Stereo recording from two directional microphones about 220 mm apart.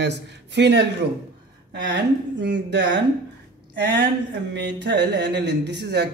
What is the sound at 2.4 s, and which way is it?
Speech, 50° right (ahead or behind).